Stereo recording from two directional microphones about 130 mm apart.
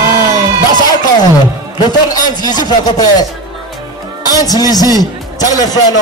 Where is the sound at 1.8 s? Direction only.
30° left (ahead or behind).